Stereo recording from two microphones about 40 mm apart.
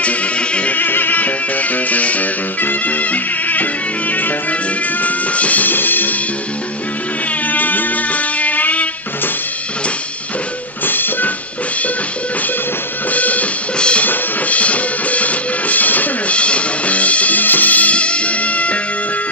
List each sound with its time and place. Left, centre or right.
0.0 s music: left
0.7 s music: left
7.4 s music: left
10.9 s music: left
13.1 s music: left
13.7 s music: left
14.0 s drum kit: left
14.6 s music: left
16.3 s music: left